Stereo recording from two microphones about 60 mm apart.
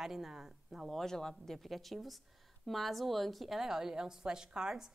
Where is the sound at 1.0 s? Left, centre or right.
Centre.